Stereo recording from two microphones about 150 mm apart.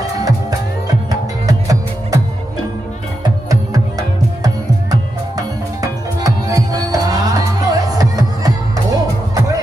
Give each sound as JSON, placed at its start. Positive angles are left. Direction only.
{"t": 1.4, "sound": "music", "side_deg": -25}
{"t": 5.8, "sound": "music", "side_deg": -25}